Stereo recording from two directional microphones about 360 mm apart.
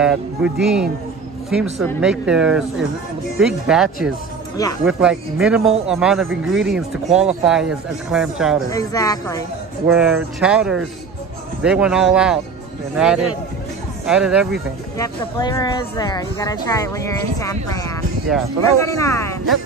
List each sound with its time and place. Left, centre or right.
0.0 s speech: centre
8.6 s speech: centre
9.8 s speech: centre
15.3 s speech: centre